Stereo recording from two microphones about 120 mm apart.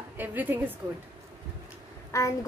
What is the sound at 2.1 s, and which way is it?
Speech, 25° left (ahead or behind).